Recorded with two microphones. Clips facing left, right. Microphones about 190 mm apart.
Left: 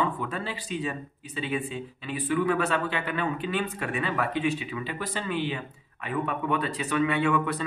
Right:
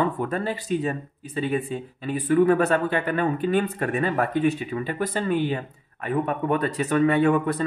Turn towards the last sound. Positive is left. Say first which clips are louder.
# right 5 dB
turn(degrees=-40)  # may be behind; listen again after turning